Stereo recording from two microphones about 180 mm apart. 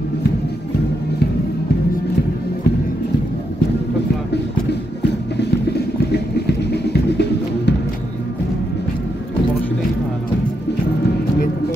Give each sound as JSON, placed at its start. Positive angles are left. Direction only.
{"t": 5.4, "sound": "music", "side_deg": 65}